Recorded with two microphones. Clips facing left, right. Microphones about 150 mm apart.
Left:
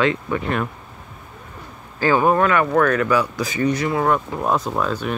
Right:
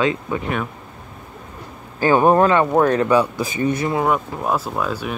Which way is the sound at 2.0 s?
20° right (ahead or behind).